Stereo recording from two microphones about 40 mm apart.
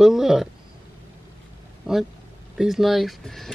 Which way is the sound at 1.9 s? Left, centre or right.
Centre.